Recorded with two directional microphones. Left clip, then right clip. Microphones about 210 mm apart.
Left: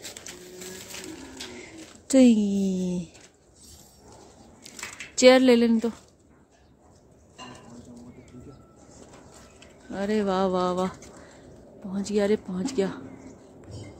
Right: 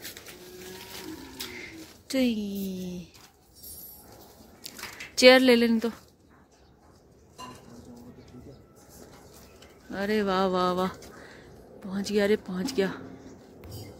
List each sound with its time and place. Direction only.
2.0 s speech: 30° left (ahead or behind)
4.6 s a sound: 5° left (ahead or behind)
9.8 s speech: 5° left (ahead or behind)